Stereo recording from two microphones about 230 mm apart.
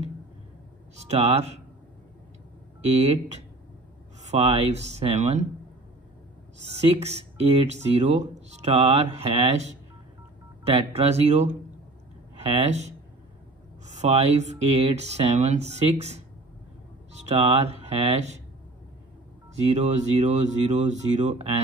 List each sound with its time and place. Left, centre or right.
0.9 s speech: right
2.8 s speech: right
6.7 s speech: right
19.6 s speech: right